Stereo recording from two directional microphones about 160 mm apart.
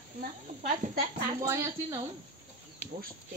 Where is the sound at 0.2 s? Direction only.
55° right (ahead or behind).